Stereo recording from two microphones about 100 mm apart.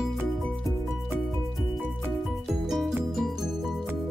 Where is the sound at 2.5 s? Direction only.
Centre (ahead or behind).